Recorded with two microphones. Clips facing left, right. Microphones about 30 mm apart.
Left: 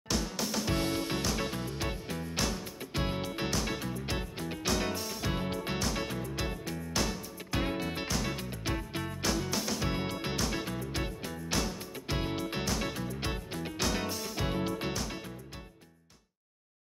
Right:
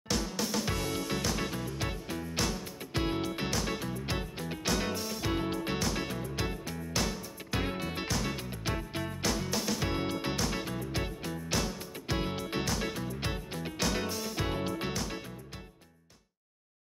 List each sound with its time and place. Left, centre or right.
0.1 s music: centre
0.7 s music: left
1.8 s music: centre